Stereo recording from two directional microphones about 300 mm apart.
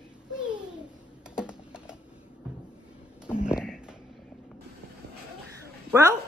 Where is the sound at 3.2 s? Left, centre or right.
Centre.